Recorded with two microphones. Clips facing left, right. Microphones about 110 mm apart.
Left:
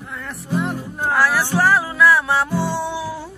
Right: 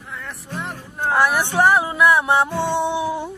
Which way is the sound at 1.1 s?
20° right (ahead or behind).